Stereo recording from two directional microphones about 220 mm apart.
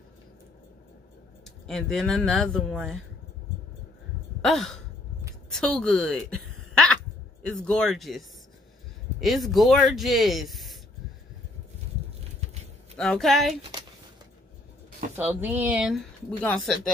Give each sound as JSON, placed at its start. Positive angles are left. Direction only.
{"t": 1.7, "sound": "speech", "side_deg": 0}
{"t": 4.4, "sound": "sigh", "side_deg": 0}
{"t": 5.5, "sound": "a sound", "side_deg": 0}
{"t": 7.4, "sound": "speech", "side_deg": 5}
{"t": 12.9, "sound": "speech", "side_deg": 5}
{"t": 15.1, "sound": "speech", "side_deg": -10}